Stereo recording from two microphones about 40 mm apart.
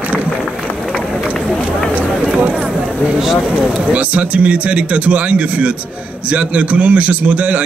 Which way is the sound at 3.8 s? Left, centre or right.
Right.